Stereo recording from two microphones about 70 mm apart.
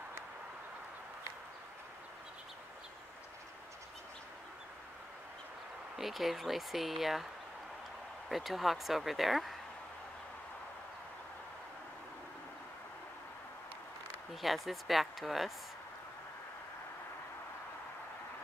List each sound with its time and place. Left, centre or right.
5.9 s speech: centre
8.3 s speech: centre
14.3 s speech: centre